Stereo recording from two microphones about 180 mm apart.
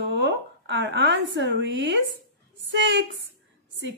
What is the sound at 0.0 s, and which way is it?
A woman's voice, 85° right.